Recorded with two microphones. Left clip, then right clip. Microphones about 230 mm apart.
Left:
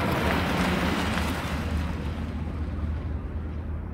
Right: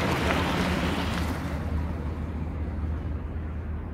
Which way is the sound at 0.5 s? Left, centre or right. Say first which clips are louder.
Left 2 dB; left.